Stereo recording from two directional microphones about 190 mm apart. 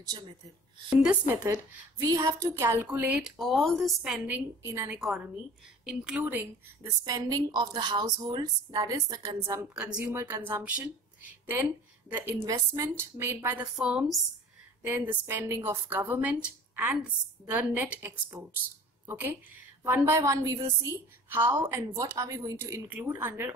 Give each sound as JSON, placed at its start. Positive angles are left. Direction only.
{"t": 0.8, "sound": "a woman's voice", "side_deg": -5}
{"t": 6.9, "sound": "a woman's voice", "side_deg": -20}
{"t": 12.1, "sound": "a woman's voice", "side_deg": -10}